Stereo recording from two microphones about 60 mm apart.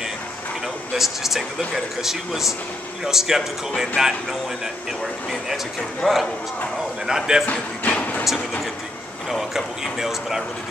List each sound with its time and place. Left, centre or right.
0.9 s speech: centre
6.0 s speech: centre
7.1 s speech: centre
7.8 s vehicle: left
8.2 s speech: centre